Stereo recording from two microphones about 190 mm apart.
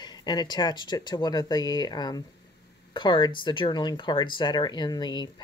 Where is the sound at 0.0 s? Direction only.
20° left (ahead or behind).